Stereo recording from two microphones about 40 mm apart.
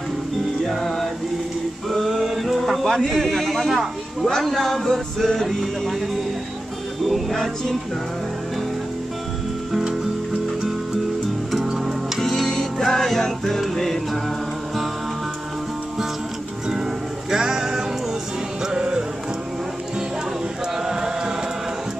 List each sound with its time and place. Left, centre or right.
0.7 s music: centre
2.8 s a man's voice: centre
7.1 s a man's voice: centre
11.5 s music: centre
16.6 s music: centre
20.8 s chant: centre